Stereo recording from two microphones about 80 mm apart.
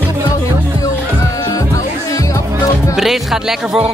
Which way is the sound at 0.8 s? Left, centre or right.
Left.